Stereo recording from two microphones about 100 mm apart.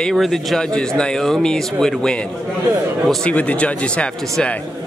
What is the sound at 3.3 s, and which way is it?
Speech, 15° left (ahead or behind).